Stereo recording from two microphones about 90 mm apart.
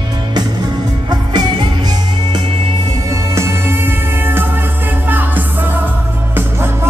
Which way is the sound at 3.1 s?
30° right (ahead or behind).